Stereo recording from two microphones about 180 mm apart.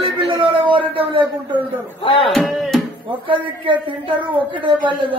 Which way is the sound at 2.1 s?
30° left (ahead or behind).